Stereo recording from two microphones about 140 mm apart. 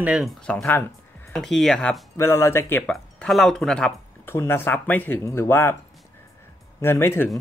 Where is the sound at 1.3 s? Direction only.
5° left (ahead or behind).